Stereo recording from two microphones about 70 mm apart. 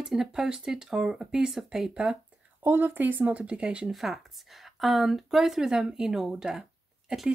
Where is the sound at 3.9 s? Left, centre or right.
Centre.